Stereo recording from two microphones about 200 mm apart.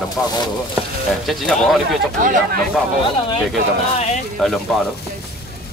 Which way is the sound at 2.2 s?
40° right (ahead or behind).